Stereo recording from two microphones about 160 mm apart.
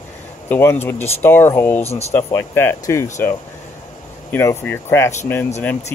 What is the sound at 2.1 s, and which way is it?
Speech, 15° left (ahead or behind).